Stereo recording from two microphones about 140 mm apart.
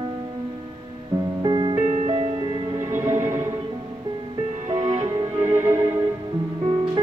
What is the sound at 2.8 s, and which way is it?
Music, 20° right (ahead or behind).